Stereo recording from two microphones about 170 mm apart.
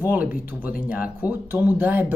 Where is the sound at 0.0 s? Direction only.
10° right (ahead or behind).